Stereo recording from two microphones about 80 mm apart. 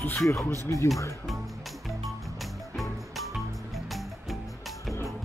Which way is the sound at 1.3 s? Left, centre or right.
Centre.